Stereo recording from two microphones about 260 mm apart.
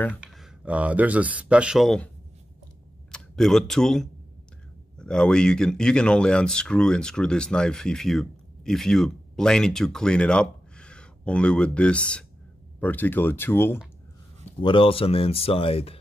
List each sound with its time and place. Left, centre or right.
0.2 s speech: centre
3.1 s speech: centre
14.6 s speech: centre